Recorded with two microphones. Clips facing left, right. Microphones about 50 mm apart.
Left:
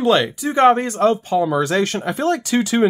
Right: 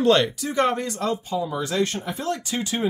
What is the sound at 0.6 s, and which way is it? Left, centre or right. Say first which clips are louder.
Speech: left 10 dB; left.